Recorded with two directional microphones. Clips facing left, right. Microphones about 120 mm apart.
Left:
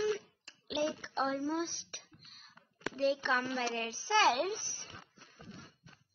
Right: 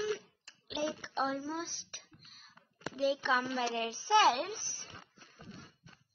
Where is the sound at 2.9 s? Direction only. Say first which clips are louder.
Even; 10° right (ahead or behind).